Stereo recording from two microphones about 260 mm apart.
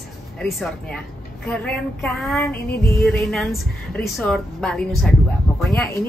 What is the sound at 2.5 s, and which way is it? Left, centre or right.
Music, left.